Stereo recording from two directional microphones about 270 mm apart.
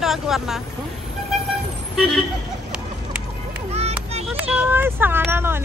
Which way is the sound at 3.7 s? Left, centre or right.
Right.